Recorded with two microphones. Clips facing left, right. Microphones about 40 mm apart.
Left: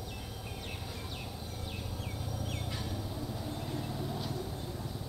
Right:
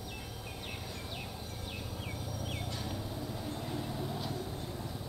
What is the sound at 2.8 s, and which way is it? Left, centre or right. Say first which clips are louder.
Vehicle: even; centre.